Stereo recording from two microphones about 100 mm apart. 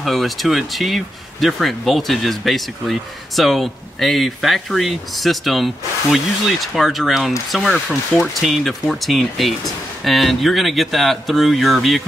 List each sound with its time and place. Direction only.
0.0 s speech: centre (ahead or behind)